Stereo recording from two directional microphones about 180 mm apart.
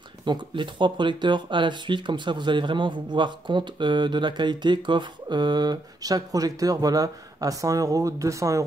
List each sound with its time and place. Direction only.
0.2 s speech: 25° right (ahead or behind)